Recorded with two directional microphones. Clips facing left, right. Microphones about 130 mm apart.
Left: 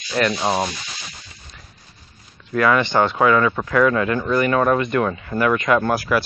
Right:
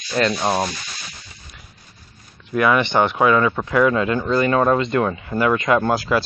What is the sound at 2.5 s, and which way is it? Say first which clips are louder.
Speech: even; 20° right (ahead or behind).